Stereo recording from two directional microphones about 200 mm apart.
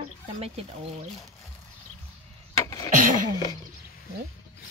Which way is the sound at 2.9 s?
40° right (ahead or behind).